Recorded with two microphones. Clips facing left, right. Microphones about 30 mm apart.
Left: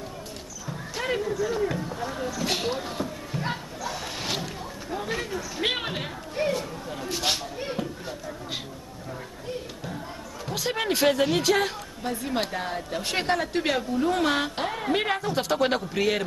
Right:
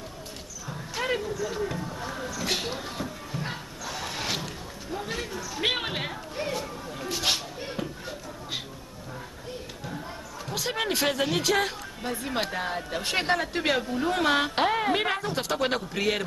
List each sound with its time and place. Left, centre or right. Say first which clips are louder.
0.7 s a sound: even; centre
1.2 s speech: left 4 dB; centre
3.9 s a sound: right 1 dB; centre
5.6 s speech: right 1 dB; centre
10.5 s speech: left 2 dB; centre
14.5 s a woman's voice: right 5 dB; right
15.0 s speech: left 2 dB; centre